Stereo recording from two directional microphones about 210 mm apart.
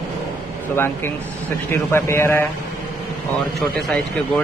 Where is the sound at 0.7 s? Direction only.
10° left (ahead or behind).